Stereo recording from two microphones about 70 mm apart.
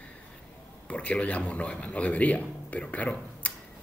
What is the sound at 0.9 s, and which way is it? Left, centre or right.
Speech, centre.